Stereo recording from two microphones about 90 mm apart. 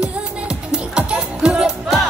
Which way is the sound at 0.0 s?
10° right (ahead or behind).